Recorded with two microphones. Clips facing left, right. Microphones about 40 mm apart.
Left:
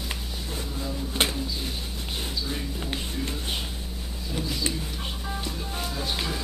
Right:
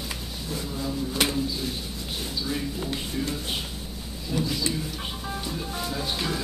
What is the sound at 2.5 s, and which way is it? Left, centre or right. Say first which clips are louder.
Speech: right 3 dB; centre.